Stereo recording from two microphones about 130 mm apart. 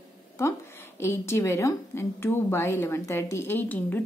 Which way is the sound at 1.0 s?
20° left (ahead or behind).